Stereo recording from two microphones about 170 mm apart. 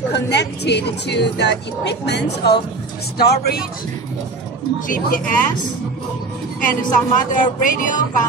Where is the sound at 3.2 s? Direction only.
65° left (ahead or behind).